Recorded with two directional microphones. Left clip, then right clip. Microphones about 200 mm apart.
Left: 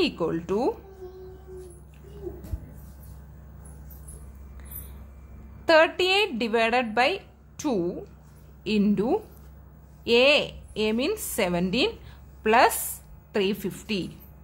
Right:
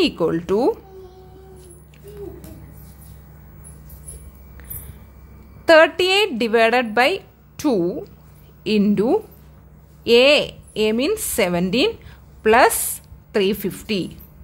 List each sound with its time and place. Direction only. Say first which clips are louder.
0.0 s a woman's voice: right 7 dB; 20° right (ahead or behind)
5.7 s a woman's voice: right 7 dB; 20° right (ahead or behind)